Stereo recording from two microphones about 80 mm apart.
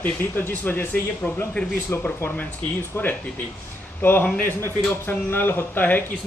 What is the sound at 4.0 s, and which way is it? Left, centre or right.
Speech, left.